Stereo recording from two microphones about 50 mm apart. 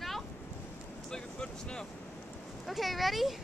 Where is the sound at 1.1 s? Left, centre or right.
Centre.